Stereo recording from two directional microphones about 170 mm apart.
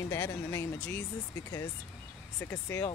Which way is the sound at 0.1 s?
15° left (ahead or behind).